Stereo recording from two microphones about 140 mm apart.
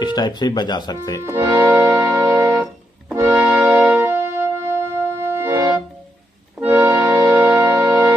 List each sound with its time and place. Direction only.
0.0 s speech: 30° left (ahead or behind)
1.2 s music: 20° right (ahead or behind)